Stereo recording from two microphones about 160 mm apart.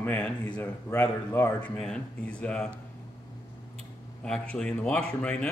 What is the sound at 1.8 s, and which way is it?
Speech, 5° left (ahead or behind).